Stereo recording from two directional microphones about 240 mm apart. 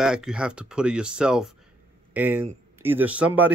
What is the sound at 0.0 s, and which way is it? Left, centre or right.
Speech, centre.